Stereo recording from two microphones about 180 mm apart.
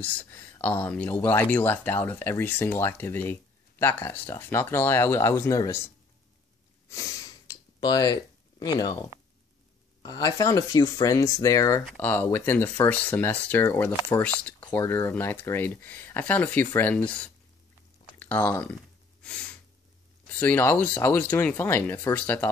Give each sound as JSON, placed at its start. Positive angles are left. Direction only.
{"t": 0.0, "sound": "speech", "side_deg": 10}
{"t": 6.9, "sound": "sniff", "side_deg": 20}
{"t": 10.0, "sound": "speech", "side_deg": 20}
{"t": 19.2, "sound": "a sound", "side_deg": 5}
{"t": 20.3, "sound": "speech", "side_deg": 10}